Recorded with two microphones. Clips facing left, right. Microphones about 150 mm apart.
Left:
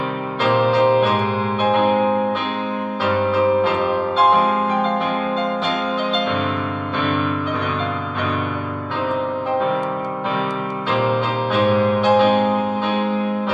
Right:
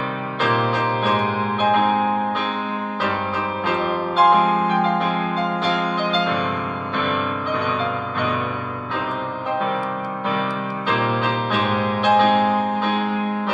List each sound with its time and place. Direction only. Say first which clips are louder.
11.5 s music: left 9 dB; centre (ahead or behind)